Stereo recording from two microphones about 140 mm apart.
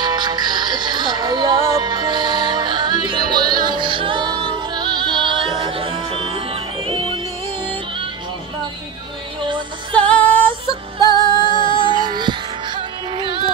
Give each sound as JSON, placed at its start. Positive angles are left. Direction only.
{"t": 0.0, "sound": "music", "side_deg": -30}
{"t": 9.9, "sound": "music", "side_deg": 10}
{"t": 11.0, "sound": "music", "side_deg": 30}
{"t": 12.0, "sound": "music", "side_deg": -30}